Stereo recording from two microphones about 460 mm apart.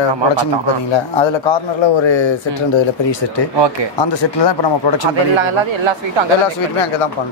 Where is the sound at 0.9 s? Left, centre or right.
Left.